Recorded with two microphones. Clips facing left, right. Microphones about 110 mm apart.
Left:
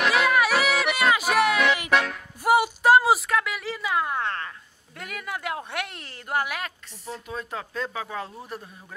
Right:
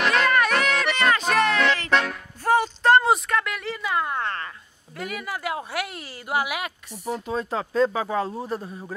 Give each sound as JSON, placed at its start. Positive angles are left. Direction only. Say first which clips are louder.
{"t": 0.0, "sound": "music", "louder": "right 1 dB", "side_deg": 5}
{"t": 2.4, "sound": "a sound", "louder": "even", "side_deg": 10}
{"t": 7.2, "sound": "speech", "louder": "right 5 dB", "side_deg": -30}